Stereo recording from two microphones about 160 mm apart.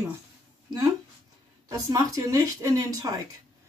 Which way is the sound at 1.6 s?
20° right (ahead or behind).